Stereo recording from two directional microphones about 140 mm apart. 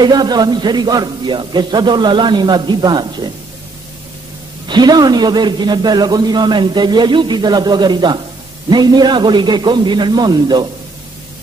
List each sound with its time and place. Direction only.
0.0 s a man's voice: 30° right (ahead or behind)
4.6 s a man's voice: 30° right (ahead or behind)